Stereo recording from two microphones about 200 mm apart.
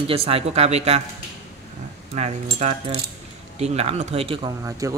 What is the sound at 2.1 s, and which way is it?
Speech, 35° right (ahead or behind).